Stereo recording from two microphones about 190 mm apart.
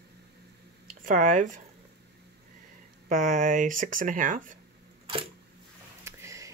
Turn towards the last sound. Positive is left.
turn(degrees=-15)  # may be behind; listen again after turning